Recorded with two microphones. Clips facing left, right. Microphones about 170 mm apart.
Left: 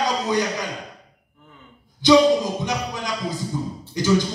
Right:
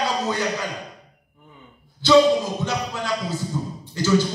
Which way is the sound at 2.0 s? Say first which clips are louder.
Left 2 dB; 15° left (ahead or behind).